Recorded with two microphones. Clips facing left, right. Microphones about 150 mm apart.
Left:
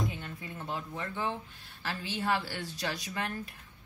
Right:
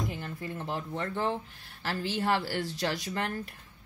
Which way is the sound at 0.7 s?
50° right (ahead or behind).